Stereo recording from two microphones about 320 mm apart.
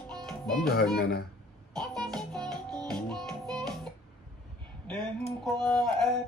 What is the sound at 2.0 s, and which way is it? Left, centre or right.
Music, centre.